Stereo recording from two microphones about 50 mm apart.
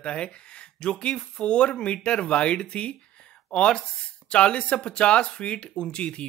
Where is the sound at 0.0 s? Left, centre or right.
Left.